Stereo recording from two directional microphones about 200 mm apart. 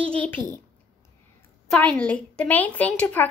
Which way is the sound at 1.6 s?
5° left (ahead or behind).